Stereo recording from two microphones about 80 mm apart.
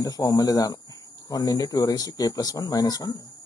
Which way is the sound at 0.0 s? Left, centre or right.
Left.